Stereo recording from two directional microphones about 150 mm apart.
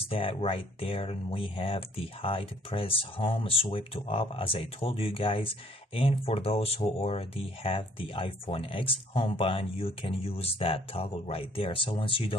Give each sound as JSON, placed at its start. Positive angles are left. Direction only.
{"t": 0.0, "sound": "speech", "side_deg": 40}